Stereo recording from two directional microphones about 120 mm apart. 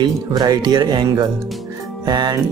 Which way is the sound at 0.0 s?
35° right (ahead or behind).